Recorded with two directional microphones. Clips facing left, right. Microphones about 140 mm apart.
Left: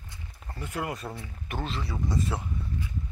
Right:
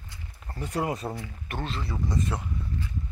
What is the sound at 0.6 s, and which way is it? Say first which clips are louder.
Speech: right 4 dB; 35° right (ahead or behind).